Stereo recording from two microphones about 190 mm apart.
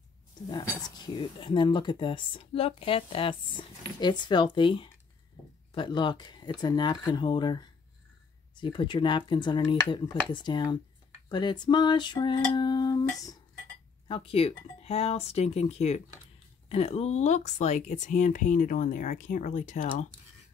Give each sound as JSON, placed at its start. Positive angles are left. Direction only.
{"t": 0.5, "sound": "speech", "side_deg": 20}
{"t": 14.0, "sound": "speech", "side_deg": 30}